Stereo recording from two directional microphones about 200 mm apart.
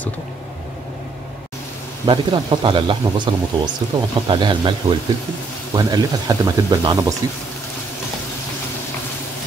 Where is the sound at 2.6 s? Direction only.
25° right (ahead or behind).